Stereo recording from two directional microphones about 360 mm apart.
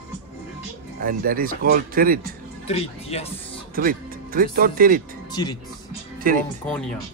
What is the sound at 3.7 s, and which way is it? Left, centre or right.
Speech, right.